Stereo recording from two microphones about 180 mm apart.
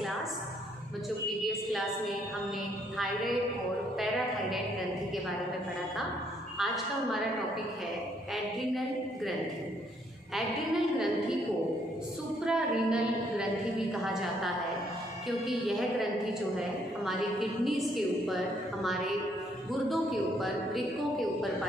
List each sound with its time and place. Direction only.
1.4 s a woman's voice: centre (ahead or behind)
6.6 s a woman's voice: centre (ahead or behind)
8.7 s a woman's voice: centre (ahead or behind)
12.4 s a woman's voice: 5° right (ahead or behind)
15.2 s a woman's voice: centre (ahead or behind)